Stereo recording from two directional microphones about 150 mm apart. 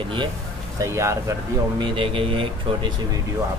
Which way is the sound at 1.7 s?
35° right (ahead or behind).